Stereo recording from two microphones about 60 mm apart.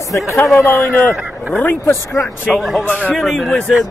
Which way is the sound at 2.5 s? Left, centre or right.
Centre.